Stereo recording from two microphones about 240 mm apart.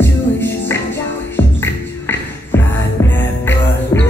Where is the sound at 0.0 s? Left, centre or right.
Centre.